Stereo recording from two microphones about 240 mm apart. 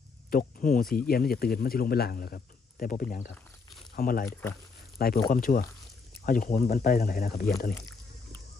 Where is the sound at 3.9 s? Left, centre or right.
Left.